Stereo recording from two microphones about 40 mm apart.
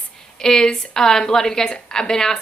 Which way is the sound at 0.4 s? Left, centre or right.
Centre.